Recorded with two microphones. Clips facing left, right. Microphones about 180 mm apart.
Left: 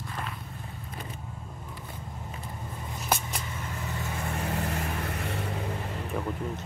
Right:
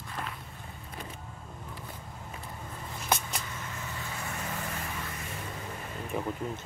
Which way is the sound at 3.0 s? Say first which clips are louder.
Left 1 dB; 5° left (ahead or behind).